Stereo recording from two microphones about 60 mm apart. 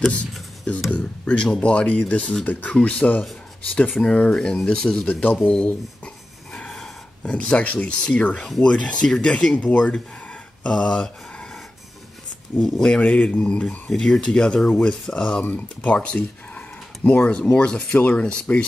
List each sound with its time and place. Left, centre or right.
0.9 s speech: centre
5.0 s speech: left
6.5 s snort: centre
7.2 s speech: centre
9.6 s speech: left
12.5 s speech: centre
15.4 s speech: left